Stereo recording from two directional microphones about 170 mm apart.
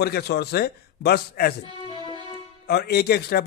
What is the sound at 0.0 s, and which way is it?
Speech, 70° left (ahead or behind).